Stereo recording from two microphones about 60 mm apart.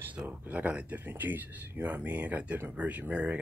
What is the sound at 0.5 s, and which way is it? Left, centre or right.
Speech, right.